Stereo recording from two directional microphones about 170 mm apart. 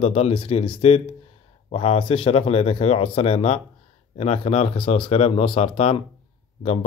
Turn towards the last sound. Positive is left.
turn(degrees=40)  # may be behind; listen again after turning